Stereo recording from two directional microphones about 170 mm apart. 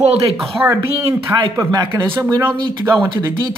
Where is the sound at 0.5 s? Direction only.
15° right (ahead or behind).